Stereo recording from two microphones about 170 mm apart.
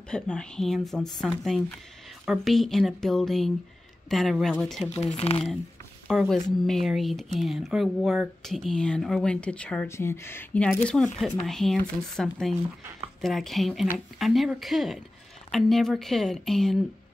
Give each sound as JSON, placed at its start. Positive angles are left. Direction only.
{"t": 0.1, "sound": "speech", "side_deg": 5}
{"t": 5.0, "sound": "speech", "side_deg": 35}
{"t": 6.0, "sound": "speech", "side_deg": 0}